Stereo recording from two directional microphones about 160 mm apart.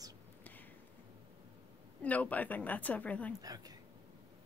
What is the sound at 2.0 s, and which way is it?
A woman's voice, 10° left (ahead or behind).